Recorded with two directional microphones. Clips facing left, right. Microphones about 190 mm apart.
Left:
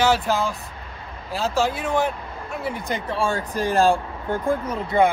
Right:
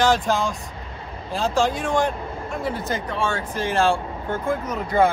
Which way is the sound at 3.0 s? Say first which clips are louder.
Left 1 dB; 30° left (ahead or behind).